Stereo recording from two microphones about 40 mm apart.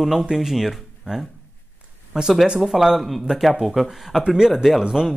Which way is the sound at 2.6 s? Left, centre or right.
Centre.